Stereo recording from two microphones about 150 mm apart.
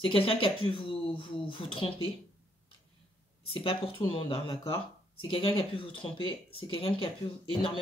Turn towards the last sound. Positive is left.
turn(degrees=35)  # may be behind; listen again after turning